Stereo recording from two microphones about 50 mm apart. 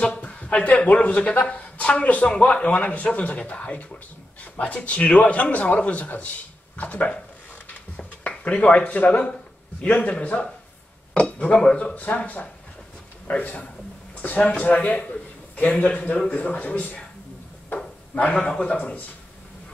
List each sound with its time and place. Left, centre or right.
0.0 s a sound: left
1.0 s a man's voice: left
8.3 s a man's voice: left
18.1 s a man's voice: left
18.4 s a man's voice: left